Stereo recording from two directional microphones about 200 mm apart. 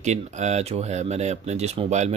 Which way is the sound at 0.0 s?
35° right (ahead or behind).